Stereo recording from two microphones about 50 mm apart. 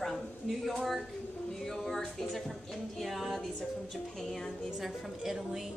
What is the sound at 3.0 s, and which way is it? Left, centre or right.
Speech, centre.